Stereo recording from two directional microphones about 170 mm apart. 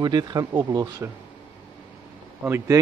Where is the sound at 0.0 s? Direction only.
25° right (ahead or behind).